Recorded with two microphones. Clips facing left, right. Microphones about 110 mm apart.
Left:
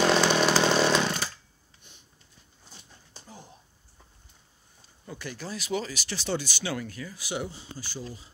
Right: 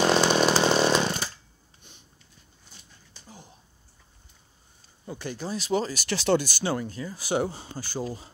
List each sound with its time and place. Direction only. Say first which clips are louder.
0.0 s chainsaw: right 1 dB; 5° right (ahead or behind)
5.0 s speech: right 4 dB; 25° right (ahead or behind)
5.7 s speech: right 5 dB; 35° right (ahead or behind)
6.0 s speech: right 8 dB; 70° right (ahead or behind)
6.4 s speech: right 4 dB; 40° right (ahead or behind); by 8.3 s 55° right (ahead or behind)